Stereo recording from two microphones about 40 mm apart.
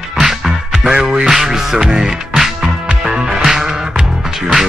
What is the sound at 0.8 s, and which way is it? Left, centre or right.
Music, centre.